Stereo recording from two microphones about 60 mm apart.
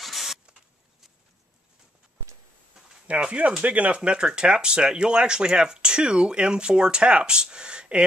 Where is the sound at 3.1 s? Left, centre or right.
Centre.